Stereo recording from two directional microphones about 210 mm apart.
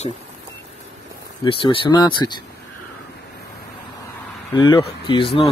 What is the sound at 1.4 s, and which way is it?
Speech, 25° left (ahead or behind).